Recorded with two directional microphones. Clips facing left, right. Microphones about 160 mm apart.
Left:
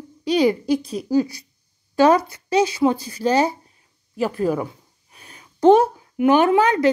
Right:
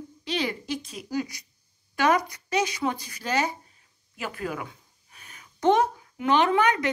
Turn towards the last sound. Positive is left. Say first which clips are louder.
# left 7 dB
turn(degrees=30)  # may be behind; listen again after turning